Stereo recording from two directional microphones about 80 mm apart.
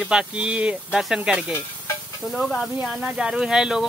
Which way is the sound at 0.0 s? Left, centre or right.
Centre.